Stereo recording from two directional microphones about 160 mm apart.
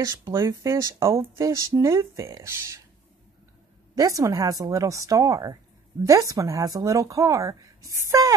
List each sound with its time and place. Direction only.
0.0 s speech: 20° right (ahead or behind)
3.9 s speech: 20° right (ahead or behind)